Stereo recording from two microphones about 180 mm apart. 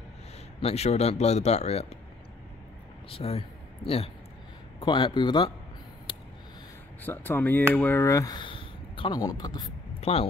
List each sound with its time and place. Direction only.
0.6 s speech: 35° left (ahead or behind)
3.1 s speech: 35° left (ahead or behind)
7.0 s speech: 10° left (ahead or behind)
9.9 s a sound: 35° left (ahead or behind)